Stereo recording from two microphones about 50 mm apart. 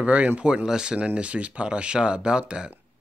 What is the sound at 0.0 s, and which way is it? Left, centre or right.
Speech, right.